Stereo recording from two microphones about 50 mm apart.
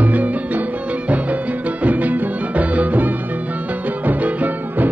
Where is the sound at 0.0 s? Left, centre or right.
Right.